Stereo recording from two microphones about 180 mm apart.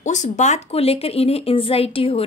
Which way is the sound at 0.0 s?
40° left (ahead or behind).